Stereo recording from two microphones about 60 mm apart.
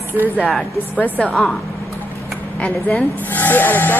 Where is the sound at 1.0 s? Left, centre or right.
Left.